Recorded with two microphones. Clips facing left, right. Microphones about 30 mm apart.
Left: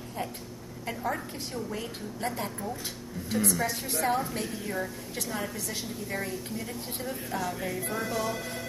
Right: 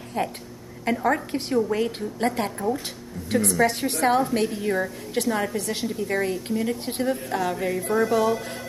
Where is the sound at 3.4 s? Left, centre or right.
Right.